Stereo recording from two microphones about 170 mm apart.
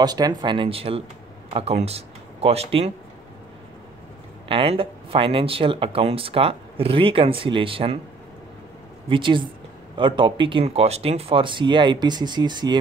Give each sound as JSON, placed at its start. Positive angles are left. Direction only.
{"t": 0.0, "sound": "speech", "side_deg": -25}
{"t": 4.5, "sound": "speech", "side_deg": -30}
{"t": 9.1, "sound": "speech", "side_deg": -30}